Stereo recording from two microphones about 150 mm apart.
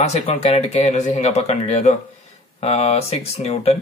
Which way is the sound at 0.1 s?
45° left (ahead or behind).